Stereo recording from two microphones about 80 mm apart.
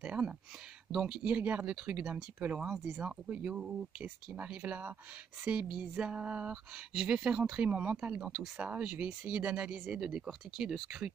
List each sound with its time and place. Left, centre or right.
0.0 s a sound: centre
1.2 s speech: right
8.3 s speech: centre